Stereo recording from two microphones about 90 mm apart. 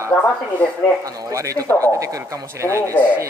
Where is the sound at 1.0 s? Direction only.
40° right (ahead or behind).